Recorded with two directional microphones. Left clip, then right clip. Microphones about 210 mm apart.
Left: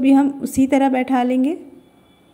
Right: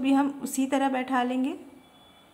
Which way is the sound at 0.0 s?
20° left (ahead or behind).